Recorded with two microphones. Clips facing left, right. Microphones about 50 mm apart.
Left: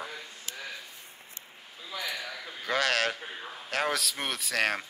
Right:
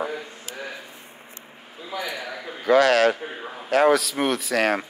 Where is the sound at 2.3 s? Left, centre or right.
Right.